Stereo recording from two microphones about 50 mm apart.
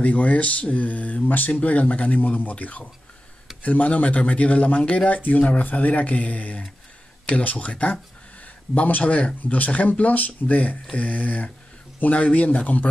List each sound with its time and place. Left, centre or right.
0.0 s speech: left